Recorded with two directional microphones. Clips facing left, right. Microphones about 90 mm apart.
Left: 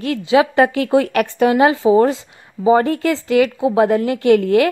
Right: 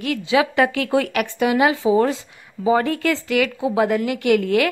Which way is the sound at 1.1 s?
40° left (ahead or behind).